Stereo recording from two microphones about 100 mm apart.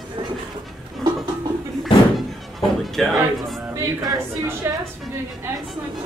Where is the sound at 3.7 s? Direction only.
30° right (ahead or behind).